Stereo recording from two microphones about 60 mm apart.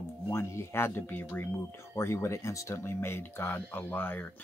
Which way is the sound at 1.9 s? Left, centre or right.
Left.